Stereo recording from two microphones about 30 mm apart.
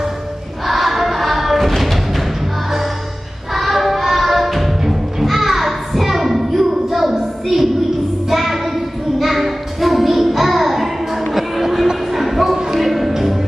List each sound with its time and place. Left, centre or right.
0.7 s choir: centre
3.5 s music: centre
8.3 s child singing: centre
11.3 s music: centre
12.2 s a sound: centre
12.8 s music: centre